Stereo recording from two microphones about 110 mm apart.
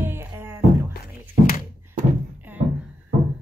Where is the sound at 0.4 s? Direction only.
20° right (ahead or behind).